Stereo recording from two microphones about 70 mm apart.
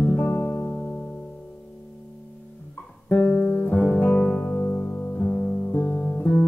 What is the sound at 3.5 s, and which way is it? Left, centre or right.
Music, left.